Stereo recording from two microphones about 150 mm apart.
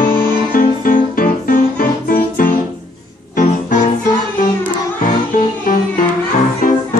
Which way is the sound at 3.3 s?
60° left (ahead or behind).